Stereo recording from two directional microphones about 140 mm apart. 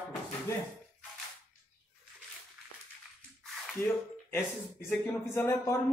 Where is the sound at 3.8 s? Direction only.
15° left (ahead or behind).